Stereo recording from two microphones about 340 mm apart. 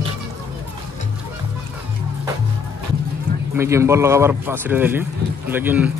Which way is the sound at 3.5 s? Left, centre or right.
Centre.